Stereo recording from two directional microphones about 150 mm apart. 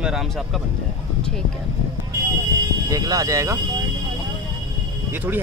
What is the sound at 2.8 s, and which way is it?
Speech, 25° right (ahead or behind).